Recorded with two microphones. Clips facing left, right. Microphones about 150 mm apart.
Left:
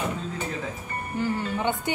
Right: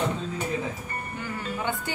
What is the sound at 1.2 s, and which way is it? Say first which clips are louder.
Speech: left 7 dB; 25° left (ahead or behind).